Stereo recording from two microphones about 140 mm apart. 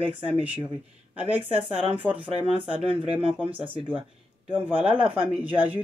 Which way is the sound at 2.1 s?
45° right (ahead or behind).